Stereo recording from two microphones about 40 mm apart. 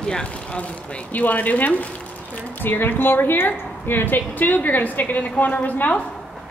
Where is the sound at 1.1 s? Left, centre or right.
Left.